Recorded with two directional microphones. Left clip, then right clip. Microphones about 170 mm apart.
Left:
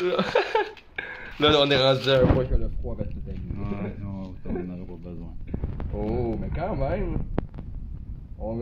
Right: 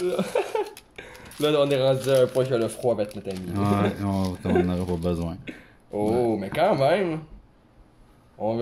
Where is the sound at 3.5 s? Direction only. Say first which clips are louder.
Right 11 dB; 90° right.